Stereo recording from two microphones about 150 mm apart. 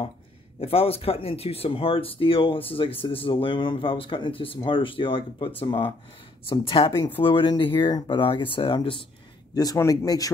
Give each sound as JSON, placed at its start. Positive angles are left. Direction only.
{"t": 0.6, "sound": "speech", "side_deg": 40}